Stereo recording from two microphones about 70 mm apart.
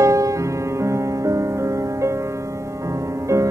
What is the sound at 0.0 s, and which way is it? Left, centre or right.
Music, right.